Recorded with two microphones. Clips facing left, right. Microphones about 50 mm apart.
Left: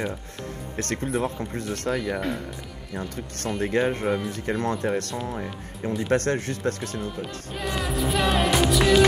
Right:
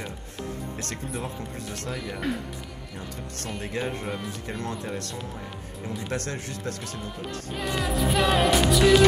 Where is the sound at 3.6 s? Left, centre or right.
Left.